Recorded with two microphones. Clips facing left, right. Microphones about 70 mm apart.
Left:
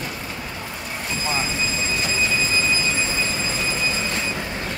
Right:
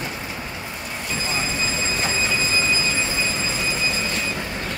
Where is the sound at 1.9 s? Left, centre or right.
Right.